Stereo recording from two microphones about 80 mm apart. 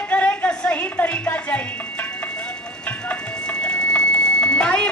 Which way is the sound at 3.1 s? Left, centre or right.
Centre.